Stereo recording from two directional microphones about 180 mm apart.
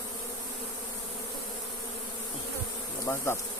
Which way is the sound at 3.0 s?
15° left (ahead or behind).